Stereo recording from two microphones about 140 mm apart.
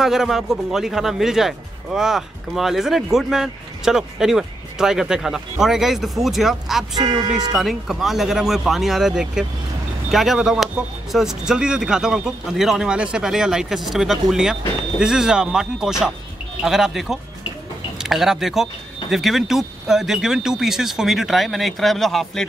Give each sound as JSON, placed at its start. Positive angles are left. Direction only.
{"t": 0.0, "sound": "speech", "side_deg": -5}
{"t": 7.0, "sound": "speech", "side_deg": -30}
{"t": 7.5, "sound": "speech", "side_deg": 0}